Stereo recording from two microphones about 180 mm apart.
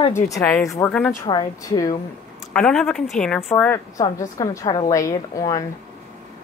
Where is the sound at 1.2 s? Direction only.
20° left (ahead or behind).